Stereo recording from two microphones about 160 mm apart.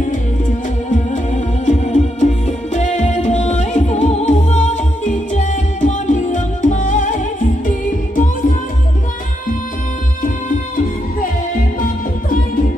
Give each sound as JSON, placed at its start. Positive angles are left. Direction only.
{"t": 0.8, "sound": "music", "side_deg": 50}